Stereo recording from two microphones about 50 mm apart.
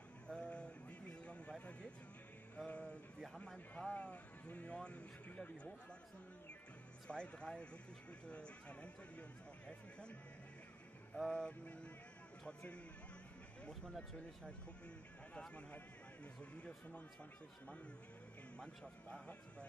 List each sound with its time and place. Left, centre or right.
0.3 s a sound: centre
2.5 s music: left
3.5 s speech: left
7.1 s speech: left
11.3 s speech: left
15.3 s speech: left
18.6 s speech: centre